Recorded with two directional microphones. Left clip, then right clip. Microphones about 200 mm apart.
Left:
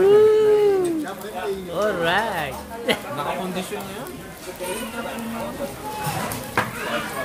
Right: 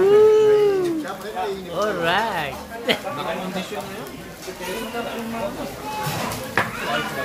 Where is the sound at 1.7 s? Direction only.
5° left (ahead or behind).